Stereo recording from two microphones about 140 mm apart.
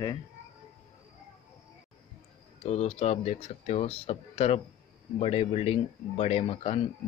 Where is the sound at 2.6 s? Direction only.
50° left (ahead or behind).